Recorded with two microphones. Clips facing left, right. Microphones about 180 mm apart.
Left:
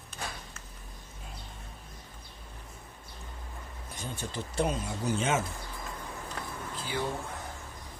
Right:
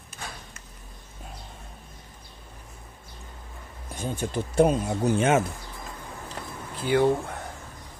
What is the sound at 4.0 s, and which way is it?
Speech, 50° right (ahead or behind).